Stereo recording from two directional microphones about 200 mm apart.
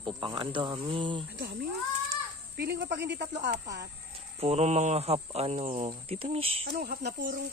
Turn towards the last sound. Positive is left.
turn(degrees=-55)  # may be behind; listen again after turning